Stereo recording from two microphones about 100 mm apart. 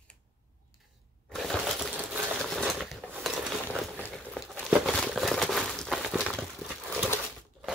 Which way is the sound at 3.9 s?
10° left (ahead or behind).